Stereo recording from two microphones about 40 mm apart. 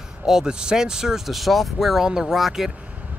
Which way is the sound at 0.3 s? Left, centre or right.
Centre.